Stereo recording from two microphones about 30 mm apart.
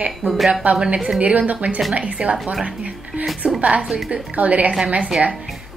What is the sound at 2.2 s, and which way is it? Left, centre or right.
A woman's voice, right.